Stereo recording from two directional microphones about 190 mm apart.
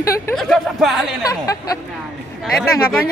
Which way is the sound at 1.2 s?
20° left (ahead or behind).